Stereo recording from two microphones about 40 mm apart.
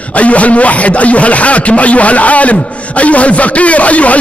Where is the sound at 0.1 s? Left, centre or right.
Left.